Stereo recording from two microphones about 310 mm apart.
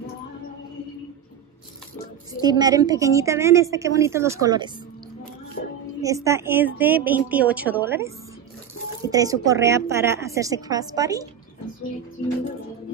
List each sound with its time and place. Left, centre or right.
2.4 s a woman's voice: centre
5.6 s music: left
5.9 s a woman's voice: centre